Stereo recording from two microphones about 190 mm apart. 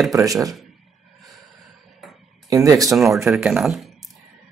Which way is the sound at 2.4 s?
20° right (ahead or behind).